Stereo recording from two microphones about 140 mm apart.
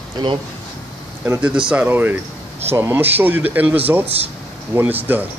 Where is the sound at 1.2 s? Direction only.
10° right (ahead or behind).